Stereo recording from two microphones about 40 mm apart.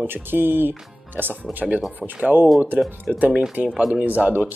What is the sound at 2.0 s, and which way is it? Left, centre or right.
Speech, right.